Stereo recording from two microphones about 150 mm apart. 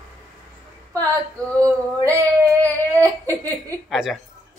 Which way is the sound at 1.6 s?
20° right (ahead or behind).